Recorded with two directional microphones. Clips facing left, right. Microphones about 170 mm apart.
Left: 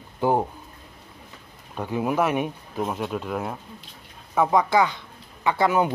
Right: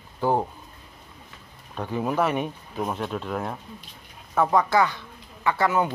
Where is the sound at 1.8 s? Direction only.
10° left (ahead or behind).